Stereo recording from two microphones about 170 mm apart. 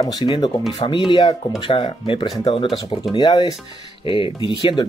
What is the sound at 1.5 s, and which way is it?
Speech, 30° left (ahead or behind).